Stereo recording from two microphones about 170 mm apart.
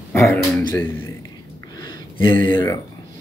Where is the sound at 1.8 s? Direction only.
25° left (ahead or behind).